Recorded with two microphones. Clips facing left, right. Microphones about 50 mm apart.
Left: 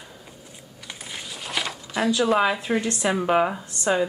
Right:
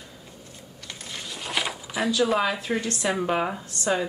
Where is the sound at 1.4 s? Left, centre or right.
Centre.